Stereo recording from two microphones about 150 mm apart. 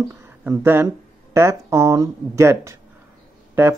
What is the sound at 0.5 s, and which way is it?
Speech, 15° right (ahead or behind).